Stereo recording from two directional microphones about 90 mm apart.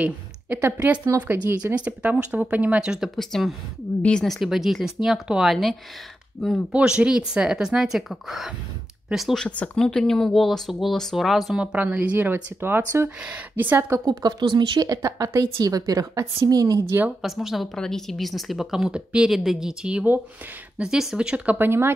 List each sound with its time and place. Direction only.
0.0 s a woman's voice: 20° right (ahead or behind)
3.2 s a woman's voice: 5° left (ahead or behind)
6.7 s a woman's voice: 10° right (ahead or behind)
11.6 s speech: 15° right (ahead or behind)
14.0 s speech: 55° right (ahead or behind)
14.9 s a woman's voice: 35° right (ahead or behind)
17.2 s a woman's voice: 5° right (ahead or behind)
21.5 s speech: 25° right (ahead or behind)